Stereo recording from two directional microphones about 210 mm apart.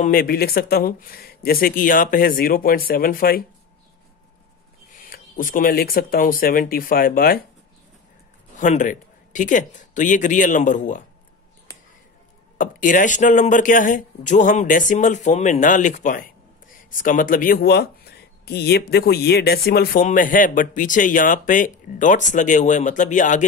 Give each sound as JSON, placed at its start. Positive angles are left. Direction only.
{"t": 0.0, "sound": "speech", "side_deg": 45}
{"t": 4.9, "sound": "speech", "side_deg": 40}
{"t": 8.5, "sound": "speech", "side_deg": 35}
{"t": 12.5, "sound": "speech", "side_deg": 40}